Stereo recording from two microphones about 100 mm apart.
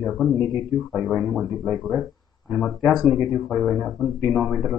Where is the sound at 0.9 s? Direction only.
Centre (ahead or behind).